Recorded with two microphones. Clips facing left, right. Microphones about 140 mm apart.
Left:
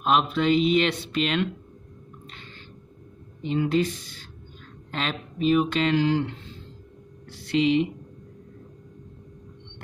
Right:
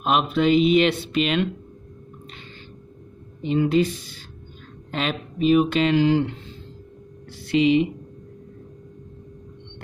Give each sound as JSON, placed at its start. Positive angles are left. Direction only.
{"t": 0.0, "sound": "speech", "side_deg": -10}
{"t": 3.4, "sound": "speech", "side_deg": -15}
{"t": 4.9, "sound": "speech", "side_deg": -10}
{"t": 7.5, "sound": "speech", "side_deg": -10}